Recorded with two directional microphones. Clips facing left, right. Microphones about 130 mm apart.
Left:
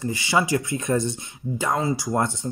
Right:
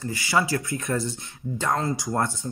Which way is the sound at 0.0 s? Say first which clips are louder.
Left 2 dB; 20° left (ahead or behind).